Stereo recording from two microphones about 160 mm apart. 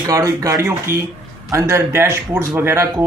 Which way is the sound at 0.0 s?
20° right (ahead or behind).